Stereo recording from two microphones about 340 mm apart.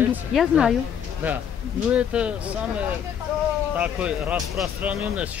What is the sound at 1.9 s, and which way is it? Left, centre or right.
Speech, centre.